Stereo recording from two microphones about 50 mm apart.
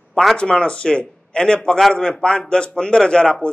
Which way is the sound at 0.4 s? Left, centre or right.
Centre.